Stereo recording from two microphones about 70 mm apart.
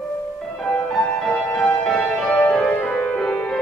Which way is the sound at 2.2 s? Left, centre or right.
Left.